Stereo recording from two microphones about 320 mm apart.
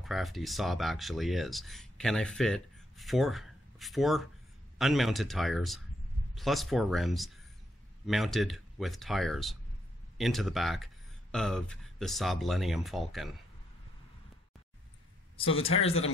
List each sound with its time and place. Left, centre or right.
0.0 s speech: centre
15.3 s speech: centre